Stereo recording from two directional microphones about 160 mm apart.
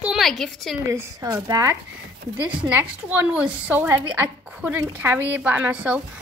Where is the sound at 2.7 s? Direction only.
10° right (ahead or behind).